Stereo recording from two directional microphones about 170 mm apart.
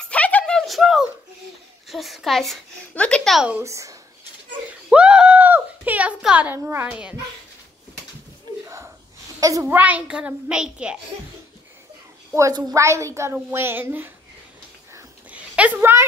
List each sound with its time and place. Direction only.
0.0 s a sound: 10° left (ahead or behind)
1.9 s a child's voice: centre (ahead or behind)
3.6 s a child's voice: 20° right (ahead or behind)
4.8 s speech: 5° right (ahead or behind)
8.6 s a sound: 15° right (ahead or behind)
9.4 s a woman's voice: 20° right (ahead or behind)
9.8 s a child's voice: 10° right (ahead or behind)
12.4 s a child's voice: 20° right (ahead or behind)
15.0 s a sound: 10° right (ahead or behind)